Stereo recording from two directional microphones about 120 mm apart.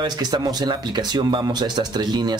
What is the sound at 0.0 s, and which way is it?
Speech, 35° right (ahead or behind).